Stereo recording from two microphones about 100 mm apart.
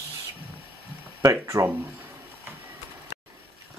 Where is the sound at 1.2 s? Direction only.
30° right (ahead or behind).